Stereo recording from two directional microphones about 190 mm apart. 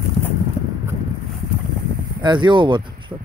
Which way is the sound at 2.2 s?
25° right (ahead or behind).